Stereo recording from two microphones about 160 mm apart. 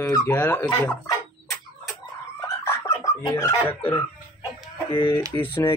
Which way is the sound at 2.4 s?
20° left (ahead or behind).